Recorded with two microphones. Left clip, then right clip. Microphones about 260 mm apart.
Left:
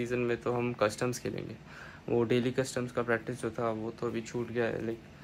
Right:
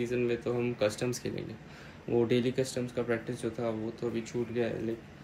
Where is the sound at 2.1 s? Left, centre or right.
Centre.